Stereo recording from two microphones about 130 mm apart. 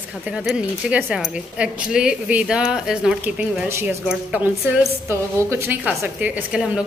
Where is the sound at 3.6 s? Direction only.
20° right (ahead or behind).